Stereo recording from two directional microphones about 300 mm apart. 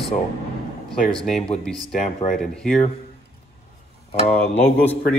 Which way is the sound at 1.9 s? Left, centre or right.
Left.